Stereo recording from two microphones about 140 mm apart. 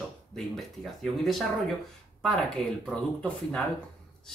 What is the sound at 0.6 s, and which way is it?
Speech, centre (ahead or behind).